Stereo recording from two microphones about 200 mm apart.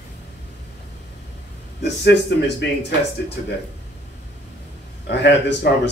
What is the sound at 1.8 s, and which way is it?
Speech, 60° left (ahead or behind).